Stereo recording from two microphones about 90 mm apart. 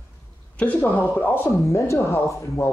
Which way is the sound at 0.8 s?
20° left (ahead or behind).